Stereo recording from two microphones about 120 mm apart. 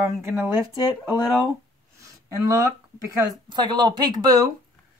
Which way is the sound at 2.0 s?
25° right (ahead or behind).